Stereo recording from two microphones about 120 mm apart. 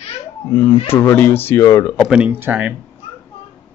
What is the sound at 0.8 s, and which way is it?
Speech, 15° left (ahead or behind).